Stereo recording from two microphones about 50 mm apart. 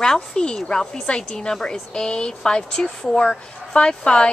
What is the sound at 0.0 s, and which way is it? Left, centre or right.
A woman's voice, centre.